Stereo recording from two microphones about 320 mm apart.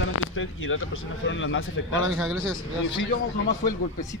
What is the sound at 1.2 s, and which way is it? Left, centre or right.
Speech, left.